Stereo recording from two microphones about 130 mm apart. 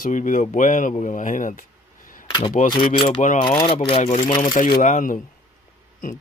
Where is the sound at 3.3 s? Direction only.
40° left (ahead or behind).